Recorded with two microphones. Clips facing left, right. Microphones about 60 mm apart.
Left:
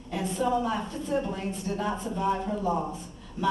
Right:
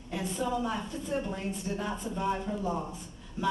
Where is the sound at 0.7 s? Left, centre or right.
Left.